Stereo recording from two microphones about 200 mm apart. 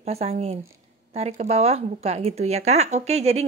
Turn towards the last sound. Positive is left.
turn(degrees=-30)  # may be behind; listen again after turning